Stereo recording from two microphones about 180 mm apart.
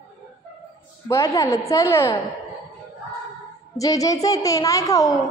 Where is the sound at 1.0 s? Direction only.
15° left (ahead or behind).